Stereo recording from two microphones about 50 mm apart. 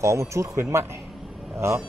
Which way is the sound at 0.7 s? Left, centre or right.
Right.